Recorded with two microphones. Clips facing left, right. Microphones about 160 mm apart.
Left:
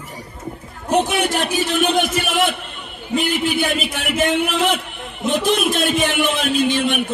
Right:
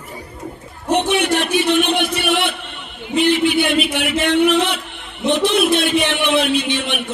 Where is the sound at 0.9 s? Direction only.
40° left (ahead or behind).